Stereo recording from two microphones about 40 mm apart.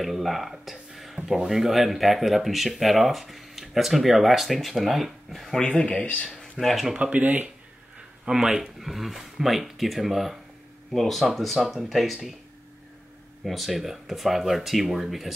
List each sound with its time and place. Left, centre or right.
0.0 s speech: centre
5.6 s speech: left
6.6 s speech: centre
7.2 s speech: right
8.3 s speech: centre
8.7 s speech: centre
13.4 s speech: centre